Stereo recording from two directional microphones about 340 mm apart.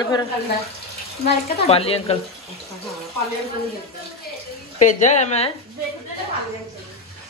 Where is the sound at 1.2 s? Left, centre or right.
Centre.